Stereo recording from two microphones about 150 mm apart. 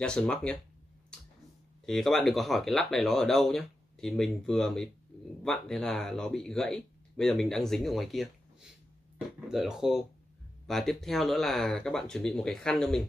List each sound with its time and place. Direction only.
0.0 s speech: 5° left (ahead or behind)
1.9 s speech: centre (ahead or behind)
9.5 s speech: 5° right (ahead or behind)